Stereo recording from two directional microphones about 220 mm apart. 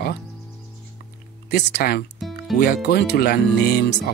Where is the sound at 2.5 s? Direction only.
45° left (ahead or behind).